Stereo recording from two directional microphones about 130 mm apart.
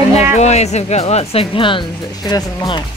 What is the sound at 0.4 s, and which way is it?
Speech, 60° left (ahead or behind).